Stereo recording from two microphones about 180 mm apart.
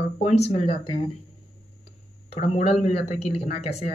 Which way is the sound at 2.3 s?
35° left (ahead or behind).